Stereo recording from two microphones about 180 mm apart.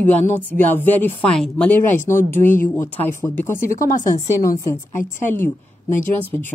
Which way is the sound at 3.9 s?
45° left (ahead or behind).